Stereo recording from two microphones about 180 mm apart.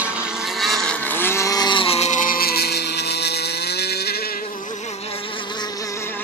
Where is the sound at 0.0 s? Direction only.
5° right (ahead or behind); by 4.2 s 65° left (ahead or behind).